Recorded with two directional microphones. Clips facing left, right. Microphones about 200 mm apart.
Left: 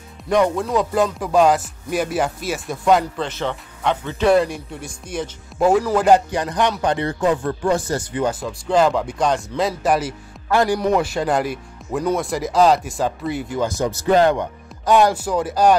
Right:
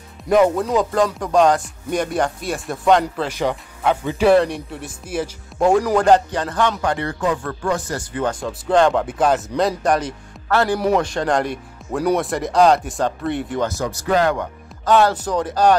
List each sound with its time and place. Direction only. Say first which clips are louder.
0.3 s music: right 2 dB; 5° right (ahead or behind)
3.3 s speech: right 3 dB; 10° right (ahead or behind)
4.4 s music: right 1 dB; centre (ahead or behind)
5.9 s speech: even; 10° left (ahead or behind)
8.3 s music: right 1 dB; centre (ahead or behind)
13.7 s speech: left 3 dB; 20° left (ahead or behind)